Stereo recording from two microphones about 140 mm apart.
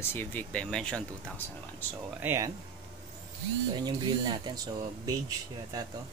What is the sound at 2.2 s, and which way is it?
Speech, 15° right (ahead or behind).